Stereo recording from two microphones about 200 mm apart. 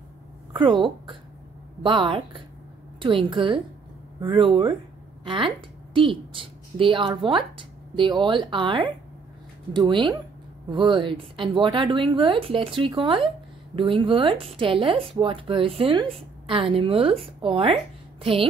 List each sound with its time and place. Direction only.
0.5 s a woman's voice: 25° right (ahead or behind)